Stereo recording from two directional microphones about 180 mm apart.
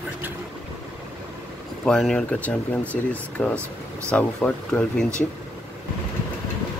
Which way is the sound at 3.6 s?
15° right (ahead or behind).